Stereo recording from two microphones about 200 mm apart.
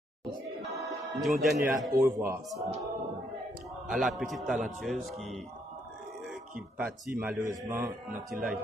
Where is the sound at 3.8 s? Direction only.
Centre (ahead or behind).